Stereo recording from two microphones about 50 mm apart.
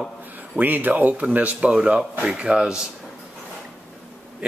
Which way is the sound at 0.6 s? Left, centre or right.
Right.